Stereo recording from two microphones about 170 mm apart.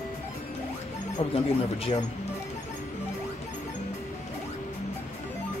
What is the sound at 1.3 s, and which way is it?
Speech, 40° left (ahead or behind).